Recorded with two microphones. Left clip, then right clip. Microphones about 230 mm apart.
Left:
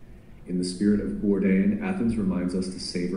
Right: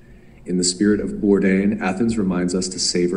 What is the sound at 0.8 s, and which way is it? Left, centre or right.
Speech, right.